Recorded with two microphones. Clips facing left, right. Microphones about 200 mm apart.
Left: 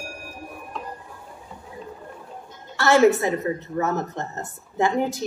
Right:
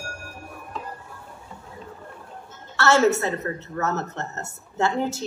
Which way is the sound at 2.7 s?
15° left (ahead or behind).